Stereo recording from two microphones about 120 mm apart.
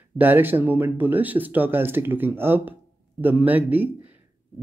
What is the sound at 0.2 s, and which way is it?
Speech, 15° right (ahead or behind).